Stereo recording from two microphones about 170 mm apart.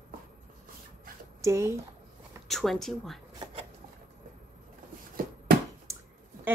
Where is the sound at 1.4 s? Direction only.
15° right (ahead or behind).